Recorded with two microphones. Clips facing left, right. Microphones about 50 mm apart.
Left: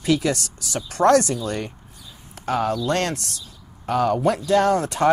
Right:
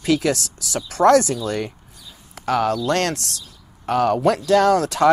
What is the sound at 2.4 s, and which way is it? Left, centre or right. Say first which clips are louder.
Speech: right 3 dB; right.